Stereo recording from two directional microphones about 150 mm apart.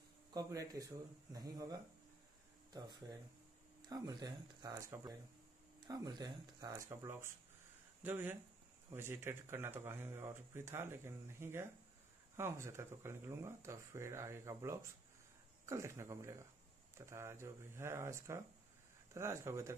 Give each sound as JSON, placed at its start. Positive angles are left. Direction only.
{"t": 0.3, "sound": "speech", "side_deg": -25}